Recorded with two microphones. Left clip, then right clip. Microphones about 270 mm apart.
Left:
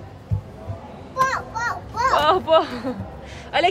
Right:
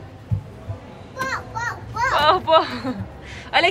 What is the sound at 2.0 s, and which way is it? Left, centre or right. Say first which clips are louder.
A woman's voice: right 1 dB; centre.